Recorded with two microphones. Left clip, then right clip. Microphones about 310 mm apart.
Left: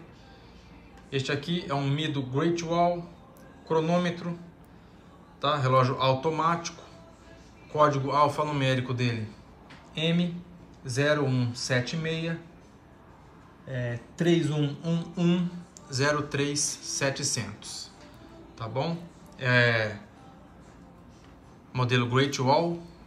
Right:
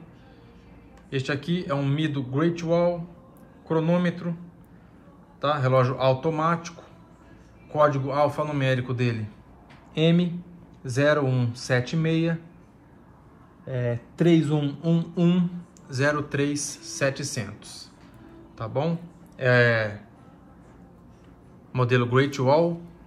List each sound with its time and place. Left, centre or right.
1.1 s speech: centre
5.4 s speech: centre
7.7 s speech: centre
9.9 s a sound: centre
10.8 s speech: centre
13.7 s speech: right
14.1 s a sound: centre
15.9 s a man's voice: centre
21.7 s speech: centre